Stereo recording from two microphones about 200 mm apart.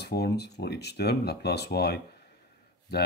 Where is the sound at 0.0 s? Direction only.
55° left (ahead or behind).